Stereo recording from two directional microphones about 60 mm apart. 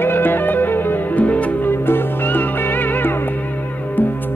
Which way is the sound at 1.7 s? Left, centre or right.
Left.